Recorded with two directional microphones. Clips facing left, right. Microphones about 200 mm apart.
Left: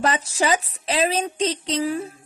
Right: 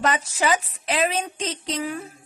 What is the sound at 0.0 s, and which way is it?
A woman's voice, 35° left (ahead or behind).